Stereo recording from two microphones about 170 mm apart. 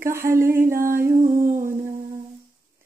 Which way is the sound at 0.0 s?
15° right (ahead or behind).